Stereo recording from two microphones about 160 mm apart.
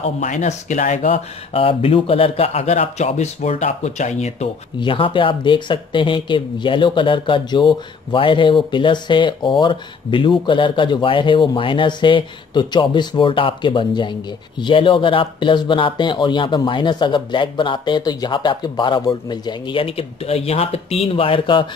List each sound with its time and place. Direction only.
0.2 s speech: 50° left (ahead or behind)
4.7 s speech: 30° left (ahead or behind)